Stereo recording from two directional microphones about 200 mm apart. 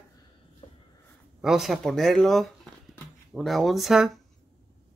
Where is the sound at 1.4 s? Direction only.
Centre (ahead or behind).